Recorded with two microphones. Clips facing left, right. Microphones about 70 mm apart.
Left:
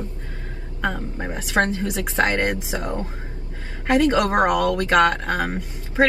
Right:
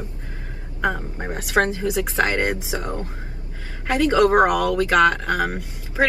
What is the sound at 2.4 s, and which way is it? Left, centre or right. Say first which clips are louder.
Speech: even; centre.